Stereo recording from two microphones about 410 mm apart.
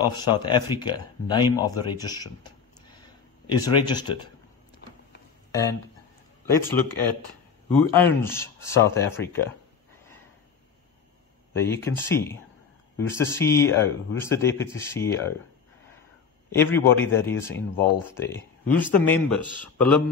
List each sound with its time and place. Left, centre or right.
0.1 s speech: centre
3.0 s a sound: centre
5.5 s speech: centre
11.5 s speech: centre
16.5 s speech: centre
19.0 s speech: left
19.3 s speech: centre